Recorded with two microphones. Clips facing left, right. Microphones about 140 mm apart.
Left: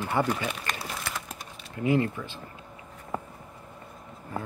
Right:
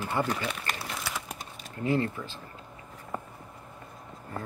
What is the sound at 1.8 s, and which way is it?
Speech, 15° left (ahead or behind).